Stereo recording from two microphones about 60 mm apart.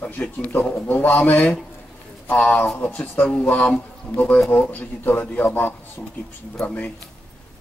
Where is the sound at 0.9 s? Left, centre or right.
Left.